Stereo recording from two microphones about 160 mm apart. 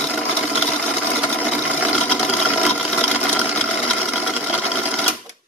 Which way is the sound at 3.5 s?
5° left (ahead or behind).